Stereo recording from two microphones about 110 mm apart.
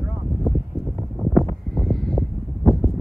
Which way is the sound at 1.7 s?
5° left (ahead or behind).